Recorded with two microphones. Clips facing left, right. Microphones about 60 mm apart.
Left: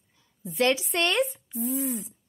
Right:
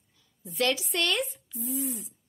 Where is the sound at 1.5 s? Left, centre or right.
Left.